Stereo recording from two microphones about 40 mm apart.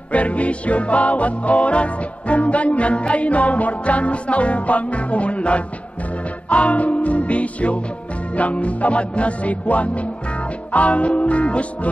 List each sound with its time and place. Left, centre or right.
0.1 s music: left